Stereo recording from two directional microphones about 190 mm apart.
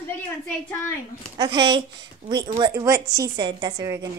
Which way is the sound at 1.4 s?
25° right (ahead or behind).